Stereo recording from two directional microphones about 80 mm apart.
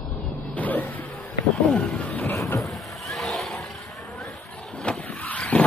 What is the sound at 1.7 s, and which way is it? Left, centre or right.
Speech, centre.